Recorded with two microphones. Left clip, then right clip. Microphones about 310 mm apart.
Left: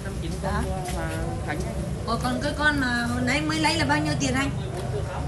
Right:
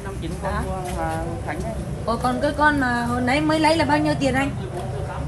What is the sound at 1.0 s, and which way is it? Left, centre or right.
Speech, centre.